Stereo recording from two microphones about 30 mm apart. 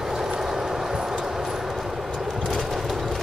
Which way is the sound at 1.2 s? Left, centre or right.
Centre.